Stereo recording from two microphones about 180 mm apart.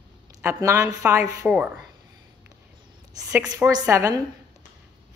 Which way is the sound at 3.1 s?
20° right (ahead or behind).